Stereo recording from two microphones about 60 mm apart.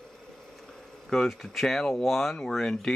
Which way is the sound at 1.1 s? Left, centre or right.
Centre.